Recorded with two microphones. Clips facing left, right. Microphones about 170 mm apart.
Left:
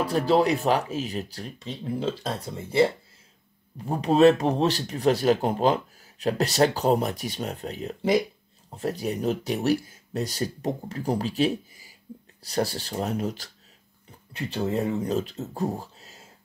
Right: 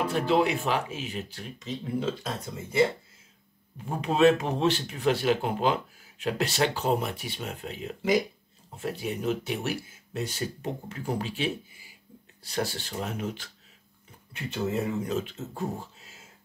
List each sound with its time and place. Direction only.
0.0 s speech: 35° left (ahead or behind)